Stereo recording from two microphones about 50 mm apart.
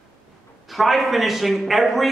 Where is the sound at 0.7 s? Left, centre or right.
Centre.